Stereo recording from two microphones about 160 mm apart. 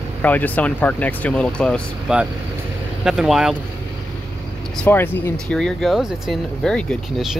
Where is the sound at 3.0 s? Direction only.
5° right (ahead or behind).